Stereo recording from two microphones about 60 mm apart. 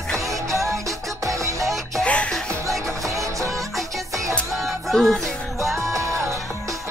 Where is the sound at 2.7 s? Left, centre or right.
Right.